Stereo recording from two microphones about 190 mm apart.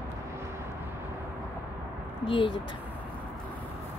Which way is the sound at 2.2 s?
25° left (ahead or behind).